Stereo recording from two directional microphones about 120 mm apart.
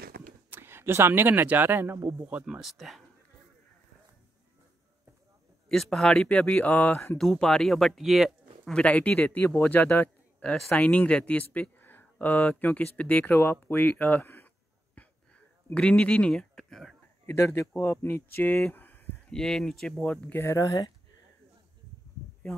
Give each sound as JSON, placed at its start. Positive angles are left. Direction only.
{"t": 0.5, "sound": "speech", "side_deg": -20}
{"t": 2.1, "sound": "speech", "side_deg": -10}
{"t": 5.7, "sound": "speech", "side_deg": 5}
{"t": 15.0, "sound": "a sound", "side_deg": 10}
{"t": 17.3, "sound": "speech", "side_deg": 25}
{"t": 19.3, "sound": "speech", "side_deg": 5}
{"t": 20.5, "sound": "speech", "side_deg": 30}